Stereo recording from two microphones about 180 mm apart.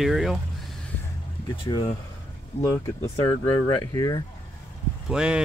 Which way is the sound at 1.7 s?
25° left (ahead or behind).